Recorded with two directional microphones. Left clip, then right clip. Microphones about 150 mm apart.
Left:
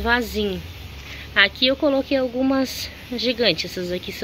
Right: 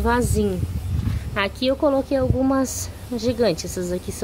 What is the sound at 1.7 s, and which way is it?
Speech, 15° left (ahead or behind).